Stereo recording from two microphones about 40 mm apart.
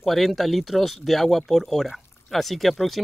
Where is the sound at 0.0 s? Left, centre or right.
Centre.